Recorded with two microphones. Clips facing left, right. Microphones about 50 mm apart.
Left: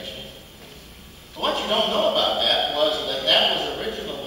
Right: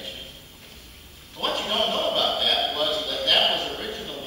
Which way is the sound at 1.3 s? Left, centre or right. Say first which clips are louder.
Left 3 dB; centre.